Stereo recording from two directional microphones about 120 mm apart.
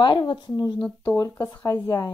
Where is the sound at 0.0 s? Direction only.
40° left (ahead or behind).